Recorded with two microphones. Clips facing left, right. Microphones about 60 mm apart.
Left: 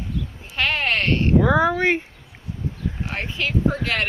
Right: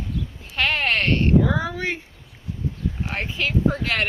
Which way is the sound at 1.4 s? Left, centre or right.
Left.